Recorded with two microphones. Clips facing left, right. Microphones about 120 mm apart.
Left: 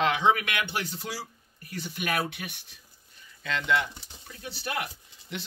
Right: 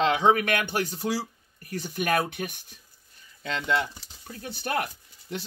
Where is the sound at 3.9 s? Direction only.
20° left (ahead or behind).